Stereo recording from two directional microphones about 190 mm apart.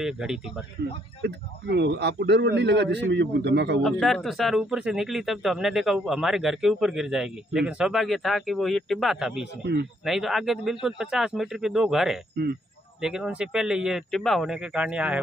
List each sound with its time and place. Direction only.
0.0 s speech: centre (ahead or behind)
1.2 s speech: 65° right (ahead or behind)
3.8 s speech: centre (ahead or behind)